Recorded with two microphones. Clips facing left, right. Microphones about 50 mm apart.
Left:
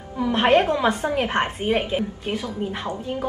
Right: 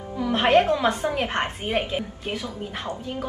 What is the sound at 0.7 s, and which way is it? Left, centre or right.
A woman's voice, centre.